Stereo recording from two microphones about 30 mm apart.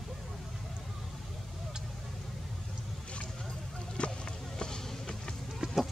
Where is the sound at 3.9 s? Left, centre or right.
Left.